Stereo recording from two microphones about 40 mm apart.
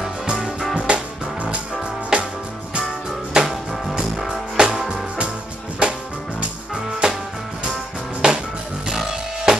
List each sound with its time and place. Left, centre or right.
0.4 s music: centre
0.7 s music: right
2.1 s music: right
3.3 s music: centre
4.8 s music: right
7.0 s music: right
8.2 s music: right
9.5 s music: centre